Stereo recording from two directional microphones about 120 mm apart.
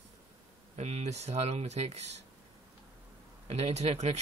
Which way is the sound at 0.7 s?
60° right (ahead or behind).